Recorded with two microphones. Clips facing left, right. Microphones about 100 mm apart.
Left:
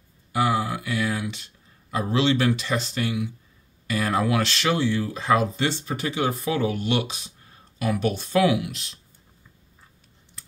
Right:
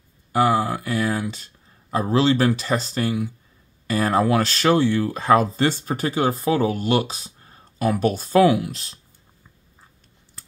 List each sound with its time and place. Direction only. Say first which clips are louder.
0.3 s speech: right 4 dB; 40° right (ahead or behind)